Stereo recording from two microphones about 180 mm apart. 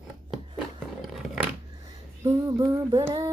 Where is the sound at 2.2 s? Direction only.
20° right (ahead or behind).